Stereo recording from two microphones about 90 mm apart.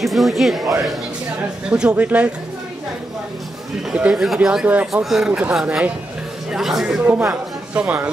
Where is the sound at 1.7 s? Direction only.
15° right (ahead or behind).